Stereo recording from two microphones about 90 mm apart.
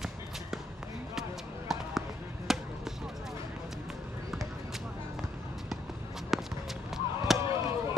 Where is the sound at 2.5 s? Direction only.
5° right (ahead or behind).